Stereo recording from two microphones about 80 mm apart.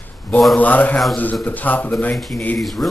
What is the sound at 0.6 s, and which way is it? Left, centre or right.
A man's voice, centre.